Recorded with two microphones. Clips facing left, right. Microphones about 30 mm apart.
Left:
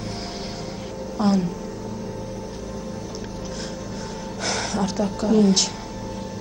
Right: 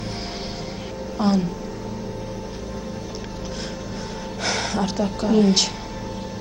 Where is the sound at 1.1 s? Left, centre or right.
Centre.